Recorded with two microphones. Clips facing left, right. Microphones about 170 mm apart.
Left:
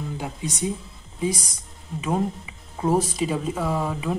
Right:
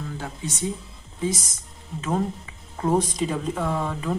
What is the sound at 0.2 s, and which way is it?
Speech, 15° left (ahead or behind).